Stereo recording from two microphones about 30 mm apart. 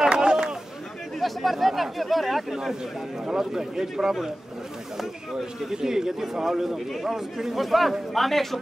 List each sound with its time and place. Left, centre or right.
0.1 s a sound: right
1.2 s speech: centre
2.5 s speech: centre